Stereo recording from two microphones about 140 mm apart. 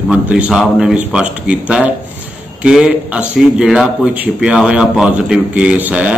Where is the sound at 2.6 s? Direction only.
5° right (ahead or behind).